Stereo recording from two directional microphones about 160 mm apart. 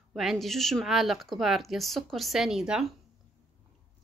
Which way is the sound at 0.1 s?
Centre (ahead or behind).